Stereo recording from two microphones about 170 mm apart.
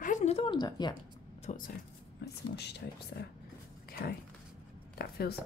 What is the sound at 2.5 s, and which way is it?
Speech, 75° left (ahead or behind).